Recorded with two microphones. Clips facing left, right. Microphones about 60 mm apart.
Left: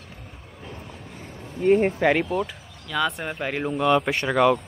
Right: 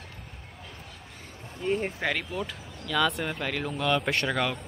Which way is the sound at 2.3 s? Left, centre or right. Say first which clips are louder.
Left 7 dB; centre.